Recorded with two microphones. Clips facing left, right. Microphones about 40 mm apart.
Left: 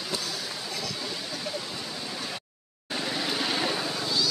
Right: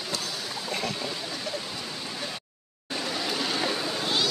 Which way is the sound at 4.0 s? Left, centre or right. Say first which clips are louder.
Right 2 dB; right.